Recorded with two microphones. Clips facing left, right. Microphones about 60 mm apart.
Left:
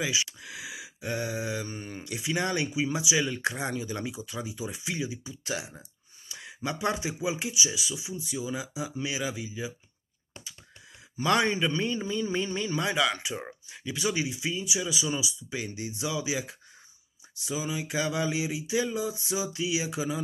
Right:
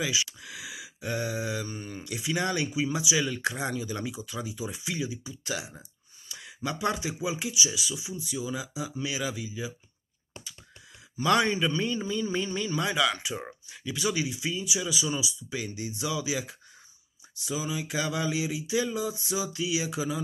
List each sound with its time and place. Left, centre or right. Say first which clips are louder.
0.0 s speech: even; centre
1.7 s speech: even; left
2.0 s speech: even; centre
6.2 s speech: even; centre
11.2 s speech: right 1 dB; centre
17.5 s speech: even; centre